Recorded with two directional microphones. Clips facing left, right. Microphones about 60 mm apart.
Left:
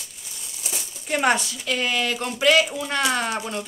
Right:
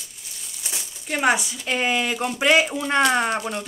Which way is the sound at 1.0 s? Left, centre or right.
Centre.